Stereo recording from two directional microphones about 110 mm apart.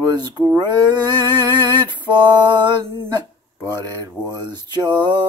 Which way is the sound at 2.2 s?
40° right (ahead or behind).